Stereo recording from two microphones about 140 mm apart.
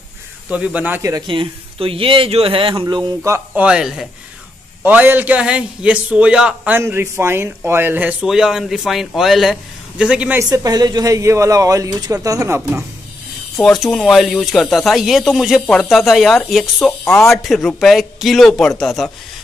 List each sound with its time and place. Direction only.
0.5 s a man's voice: 10° right (ahead or behind)
1.1 s speech: 35° right (ahead or behind)
3.3 s a man's voice: 10° right (ahead or behind)
4.8 s a man's voice: 15° right (ahead or behind)
10.5 s speech: 25° right (ahead or behind)
13.6 s speech: 5° left (ahead or behind)
17.0 s speech: 15° left (ahead or behind)
17.3 s speech: centre (ahead or behind)